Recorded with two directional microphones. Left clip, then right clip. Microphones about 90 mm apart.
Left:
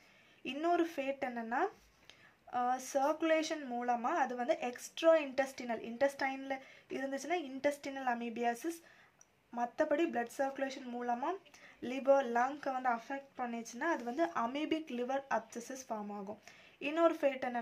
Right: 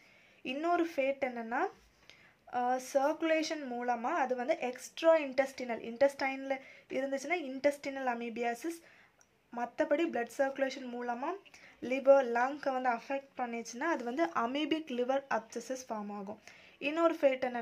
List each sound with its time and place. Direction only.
0.4 s a woman's voice: 20° right (ahead or behind)
13.7 s speech: 50° right (ahead or behind); by 17.6 s 35° right (ahead or behind)